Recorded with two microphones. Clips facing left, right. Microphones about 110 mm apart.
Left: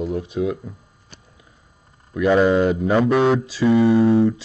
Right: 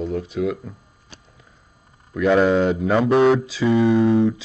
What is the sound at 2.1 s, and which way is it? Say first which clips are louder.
Speech: even; 5° left (ahead or behind).